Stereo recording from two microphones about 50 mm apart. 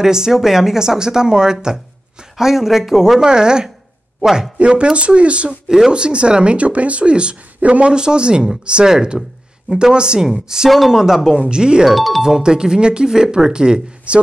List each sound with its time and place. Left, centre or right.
0.0 s speech: centre
11.5 s speech: centre
11.9 s speech: centre
12.2 s speech: centre